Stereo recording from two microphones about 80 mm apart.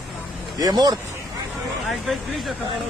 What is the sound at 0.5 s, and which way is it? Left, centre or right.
Speech, right.